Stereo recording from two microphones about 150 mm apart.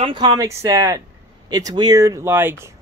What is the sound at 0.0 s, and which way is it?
Speech, 30° right (ahead or behind).